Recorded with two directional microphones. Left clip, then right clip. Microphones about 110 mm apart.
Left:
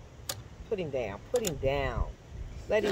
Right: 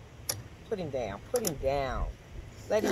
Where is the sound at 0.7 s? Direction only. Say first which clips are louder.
Left 1 dB; 45° left (ahead or behind).